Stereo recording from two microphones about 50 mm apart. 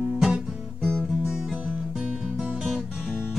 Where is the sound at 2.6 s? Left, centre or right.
Centre.